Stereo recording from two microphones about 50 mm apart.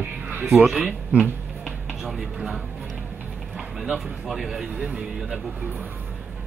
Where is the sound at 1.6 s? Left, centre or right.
Centre.